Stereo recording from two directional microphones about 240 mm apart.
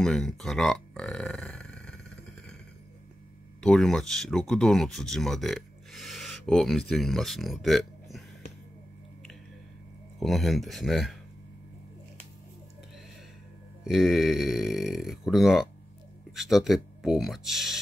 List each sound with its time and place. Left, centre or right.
0.0 s speech: centre
3.6 s speech: centre
10.1 s speech: centre
13.8 s speech: centre